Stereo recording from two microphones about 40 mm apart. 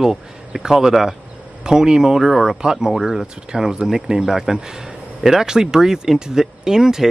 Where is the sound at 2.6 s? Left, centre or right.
Centre.